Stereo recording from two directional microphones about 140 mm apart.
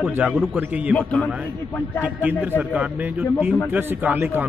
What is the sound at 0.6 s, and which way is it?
Speech, 10° right (ahead or behind).